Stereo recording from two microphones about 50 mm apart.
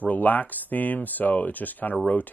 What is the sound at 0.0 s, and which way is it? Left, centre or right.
Speech, left.